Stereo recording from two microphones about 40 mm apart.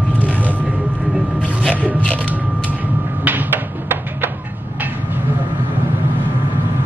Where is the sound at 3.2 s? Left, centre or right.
Right.